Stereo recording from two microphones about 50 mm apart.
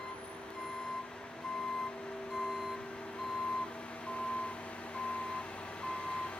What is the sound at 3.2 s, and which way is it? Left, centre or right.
Reversing beeps, centre.